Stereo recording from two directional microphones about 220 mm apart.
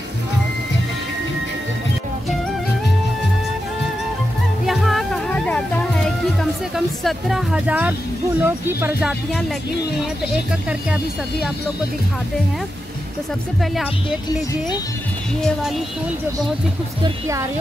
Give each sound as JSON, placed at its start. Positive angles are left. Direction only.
{"t": 4.6, "sound": "music", "side_deg": 0}
{"t": 6.7, "sound": "speech", "side_deg": 0}
{"t": 17.0, "sound": "speech", "side_deg": -15}